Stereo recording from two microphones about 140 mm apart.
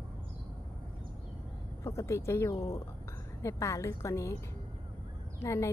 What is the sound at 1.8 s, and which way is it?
Speech, 20° left (ahead or behind).